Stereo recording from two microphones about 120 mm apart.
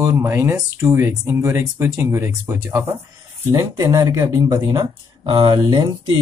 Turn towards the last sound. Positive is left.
turn(degrees=-35)  # may be behind; listen again after turning